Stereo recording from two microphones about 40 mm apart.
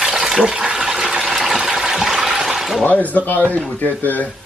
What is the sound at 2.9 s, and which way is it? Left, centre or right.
Speech, left.